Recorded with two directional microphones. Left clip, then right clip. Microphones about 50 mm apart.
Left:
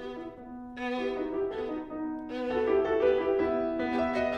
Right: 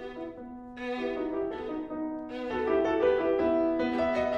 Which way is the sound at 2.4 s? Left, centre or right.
Right.